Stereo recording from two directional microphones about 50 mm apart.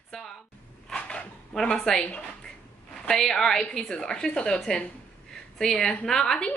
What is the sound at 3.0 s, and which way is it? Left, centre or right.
A woman's voice, centre.